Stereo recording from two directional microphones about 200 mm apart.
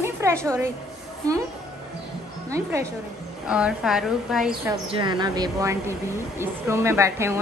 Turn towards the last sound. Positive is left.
turn(degrees=-15)  # may be behind; listen again after turning